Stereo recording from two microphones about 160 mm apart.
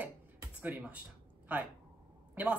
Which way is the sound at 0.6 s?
10° right (ahead or behind).